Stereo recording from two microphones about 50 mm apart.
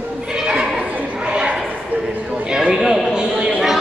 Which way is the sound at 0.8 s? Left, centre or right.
Right.